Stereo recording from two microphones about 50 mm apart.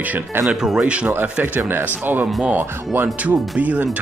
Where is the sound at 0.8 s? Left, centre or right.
Right.